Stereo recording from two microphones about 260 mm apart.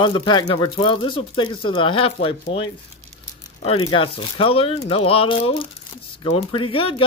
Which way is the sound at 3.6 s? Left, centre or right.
Left.